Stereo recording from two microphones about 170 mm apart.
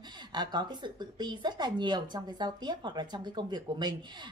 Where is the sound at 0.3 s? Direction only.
25° right (ahead or behind).